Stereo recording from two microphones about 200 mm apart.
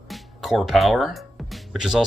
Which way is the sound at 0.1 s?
Centre (ahead or behind).